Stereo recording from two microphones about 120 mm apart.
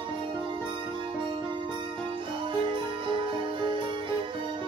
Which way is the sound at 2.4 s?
45° right (ahead or behind).